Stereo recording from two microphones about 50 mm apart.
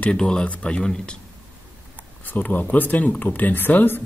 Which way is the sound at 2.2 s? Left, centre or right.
Left.